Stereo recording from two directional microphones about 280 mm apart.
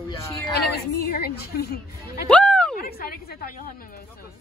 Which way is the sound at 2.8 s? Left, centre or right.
Left.